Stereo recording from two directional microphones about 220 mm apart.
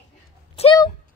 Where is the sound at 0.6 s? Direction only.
25° left (ahead or behind).